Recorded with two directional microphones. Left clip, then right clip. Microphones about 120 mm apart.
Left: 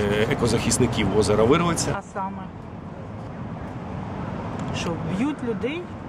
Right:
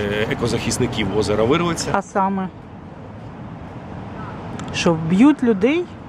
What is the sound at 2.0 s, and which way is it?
Speech, 30° right (ahead or behind).